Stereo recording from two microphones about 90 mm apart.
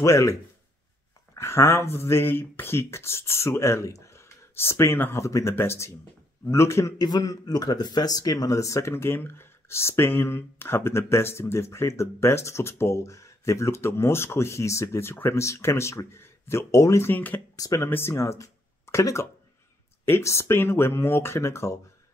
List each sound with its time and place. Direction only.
0.0 s speech: 35° left (ahead or behind)
7.0 s speech: 45° left (ahead or behind)
17.1 s speech: 20° left (ahead or behind)
17.6 s speech: 40° left (ahead or behind)
17.8 s speech: 25° left (ahead or behind)